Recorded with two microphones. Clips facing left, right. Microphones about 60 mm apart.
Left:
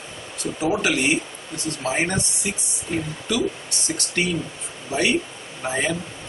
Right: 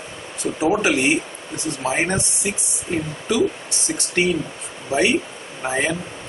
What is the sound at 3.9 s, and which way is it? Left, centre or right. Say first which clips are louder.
Speech: right 2 dB; right.